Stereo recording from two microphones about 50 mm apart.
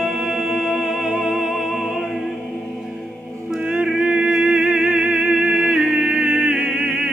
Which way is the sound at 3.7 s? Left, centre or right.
Centre.